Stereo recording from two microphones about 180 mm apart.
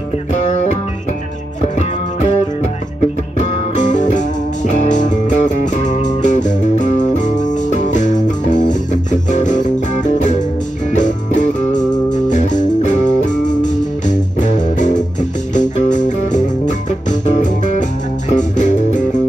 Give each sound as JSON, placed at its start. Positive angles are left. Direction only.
{"t": 3.3, "sound": "music", "side_deg": 45}